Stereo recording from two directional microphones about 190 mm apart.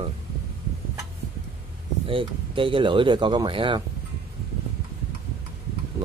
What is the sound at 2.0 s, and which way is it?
Speech, 25° right (ahead or behind).